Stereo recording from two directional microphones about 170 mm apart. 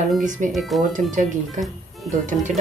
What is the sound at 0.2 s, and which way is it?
Speech, 50° right (ahead or behind).